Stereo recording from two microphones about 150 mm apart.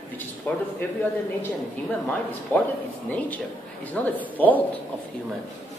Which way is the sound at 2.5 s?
15° left (ahead or behind).